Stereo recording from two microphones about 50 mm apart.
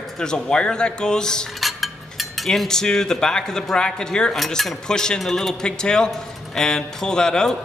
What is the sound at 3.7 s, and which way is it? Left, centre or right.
A man's voice, centre.